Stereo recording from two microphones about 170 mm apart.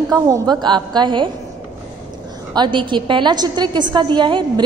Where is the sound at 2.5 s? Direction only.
25° right (ahead or behind).